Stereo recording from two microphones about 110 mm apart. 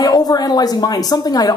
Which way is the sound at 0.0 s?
35° left (ahead or behind).